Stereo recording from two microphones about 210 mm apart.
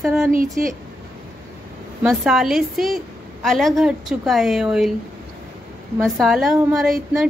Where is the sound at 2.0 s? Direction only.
Centre (ahead or behind).